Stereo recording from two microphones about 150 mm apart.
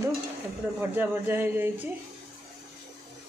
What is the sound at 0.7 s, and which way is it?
Speech, 15° right (ahead or behind).